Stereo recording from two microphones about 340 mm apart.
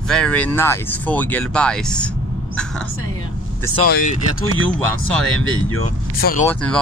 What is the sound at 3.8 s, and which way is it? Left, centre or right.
Speech, left.